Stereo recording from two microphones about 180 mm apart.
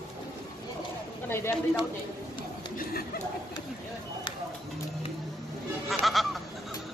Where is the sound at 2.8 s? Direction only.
55° left (ahead or behind).